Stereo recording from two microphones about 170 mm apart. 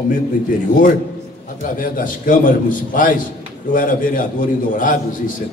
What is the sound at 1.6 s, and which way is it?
A man's voice, 55° left (ahead or behind).